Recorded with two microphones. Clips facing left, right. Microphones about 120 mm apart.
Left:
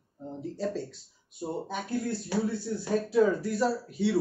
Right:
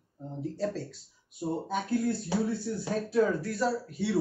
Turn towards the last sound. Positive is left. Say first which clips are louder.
# left 2 dB
turn(degrees=0)  # may be behind; listen again after turning